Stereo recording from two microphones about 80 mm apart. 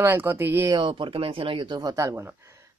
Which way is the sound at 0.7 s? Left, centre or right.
Right.